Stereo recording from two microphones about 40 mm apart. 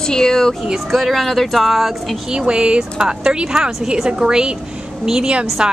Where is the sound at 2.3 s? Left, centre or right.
Right.